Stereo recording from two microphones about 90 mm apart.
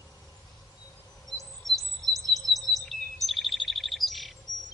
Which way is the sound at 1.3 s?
Centre (ahead or behind).